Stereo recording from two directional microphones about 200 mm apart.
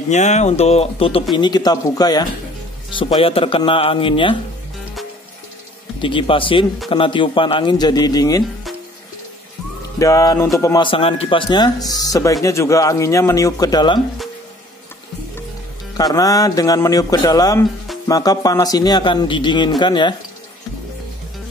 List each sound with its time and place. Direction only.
0.1 s speech: 35° left (ahead or behind)
6.0 s speech: 25° left (ahead or behind)
9.9 s speech: 15° left (ahead or behind)
16.0 s speech: 20° left (ahead or behind)